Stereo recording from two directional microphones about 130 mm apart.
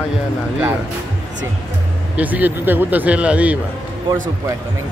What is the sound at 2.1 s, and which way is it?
Speech, 10° right (ahead or behind).